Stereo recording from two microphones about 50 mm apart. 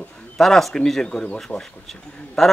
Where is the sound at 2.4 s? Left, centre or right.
Centre.